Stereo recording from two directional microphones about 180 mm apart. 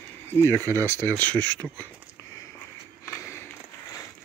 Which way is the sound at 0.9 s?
10° left (ahead or behind).